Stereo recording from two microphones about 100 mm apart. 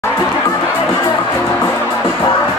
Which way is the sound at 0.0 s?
25° left (ahead or behind).